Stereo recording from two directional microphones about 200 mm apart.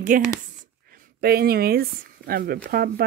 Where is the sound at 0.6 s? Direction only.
45° right (ahead or behind).